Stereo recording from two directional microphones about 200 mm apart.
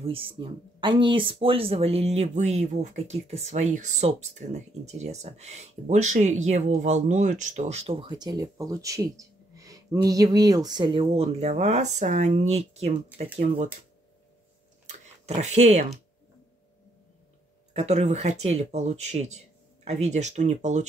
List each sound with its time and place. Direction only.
0.0 s speech: 25° right (ahead or behind)
14.9 s a sound: 35° right (ahead or behind)
17.7 s speech: 35° right (ahead or behind)